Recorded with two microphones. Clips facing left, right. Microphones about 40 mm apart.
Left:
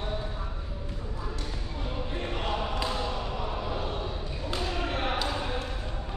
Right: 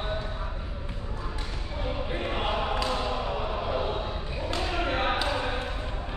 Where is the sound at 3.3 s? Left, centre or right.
Right.